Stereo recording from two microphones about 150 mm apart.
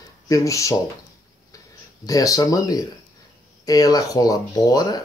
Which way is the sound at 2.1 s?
25° left (ahead or behind).